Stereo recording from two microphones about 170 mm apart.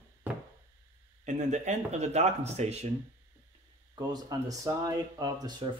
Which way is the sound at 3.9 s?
25° right (ahead or behind).